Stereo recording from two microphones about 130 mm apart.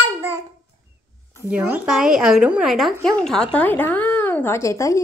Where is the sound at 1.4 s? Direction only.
10° right (ahead or behind); by 5.0 s 25° left (ahead or behind).